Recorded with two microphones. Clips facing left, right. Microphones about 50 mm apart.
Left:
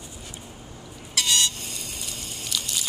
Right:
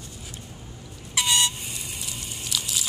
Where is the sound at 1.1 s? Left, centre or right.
Centre.